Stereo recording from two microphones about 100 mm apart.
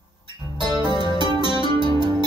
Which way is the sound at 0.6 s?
45° right (ahead or behind).